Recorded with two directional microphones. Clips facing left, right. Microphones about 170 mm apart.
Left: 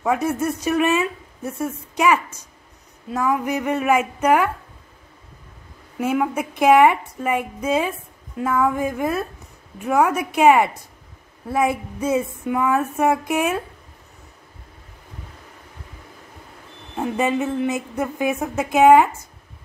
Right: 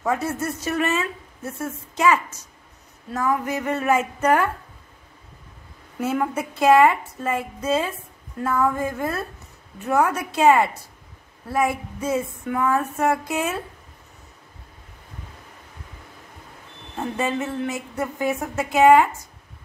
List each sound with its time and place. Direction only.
0.0 s a woman's voice: 15° left (ahead or behind)
5.9 s a woman's voice: 10° left (ahead or behind)
16.9 s speech: 15° left (ahead or behind)